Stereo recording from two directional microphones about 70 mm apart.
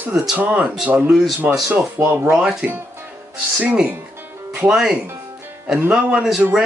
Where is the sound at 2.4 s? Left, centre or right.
Centre.